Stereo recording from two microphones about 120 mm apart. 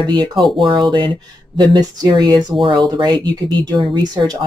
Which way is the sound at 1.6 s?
40° right (ahead or behind).